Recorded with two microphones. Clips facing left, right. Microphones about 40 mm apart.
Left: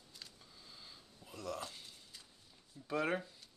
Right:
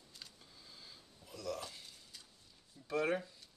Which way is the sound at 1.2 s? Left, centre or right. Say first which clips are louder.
Right 1 dB; left.